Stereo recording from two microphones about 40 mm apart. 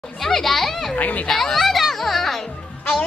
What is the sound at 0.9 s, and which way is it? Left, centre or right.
Speech, left.